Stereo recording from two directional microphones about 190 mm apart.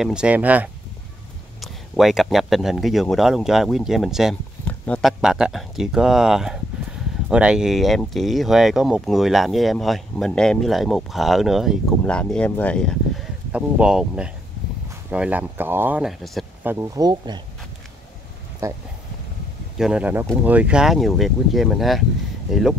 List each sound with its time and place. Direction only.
0.0 s speech: 5° right (ahead or behind)
13.5 s speech: 5° right (ahead or behind)
16.7 s speech: 15° right (ahead or behind)
18.6 s speech: 15° right (ahead or behind)
19.8 s speech: 5° right (ahead or behind)